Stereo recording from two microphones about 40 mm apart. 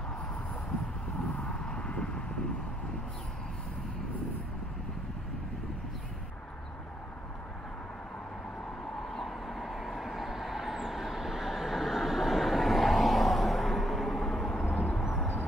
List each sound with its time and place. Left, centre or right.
1.4 s vehicle: left
9.0 s vehicle: centre
14.7 s vehicle: left
15.0 s vehicle: centre